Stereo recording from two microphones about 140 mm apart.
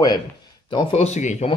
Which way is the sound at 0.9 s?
50° left (ahead or behind).